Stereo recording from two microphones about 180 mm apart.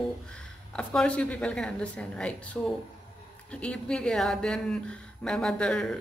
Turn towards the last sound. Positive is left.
turn(degrees=5)  # may be behind; listen again after turning